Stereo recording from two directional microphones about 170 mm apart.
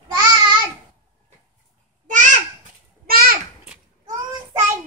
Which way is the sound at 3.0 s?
60° right (ahead or behind).